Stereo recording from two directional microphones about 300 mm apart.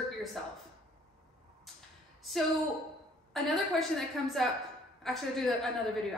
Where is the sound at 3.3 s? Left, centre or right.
Centre.